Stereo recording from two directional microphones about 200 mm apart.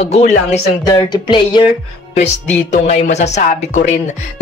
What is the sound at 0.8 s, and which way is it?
Speech, 20° left (ahead or behind).